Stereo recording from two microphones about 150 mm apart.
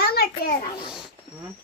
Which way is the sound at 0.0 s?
90° left.